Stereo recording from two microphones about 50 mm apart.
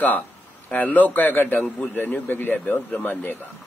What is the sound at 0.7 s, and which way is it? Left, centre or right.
Speech, left.